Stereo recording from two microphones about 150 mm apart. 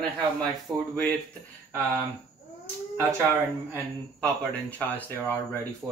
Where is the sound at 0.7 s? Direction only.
25° right (ahead or behind).